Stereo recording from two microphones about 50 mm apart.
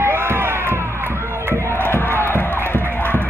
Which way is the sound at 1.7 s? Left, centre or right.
Left.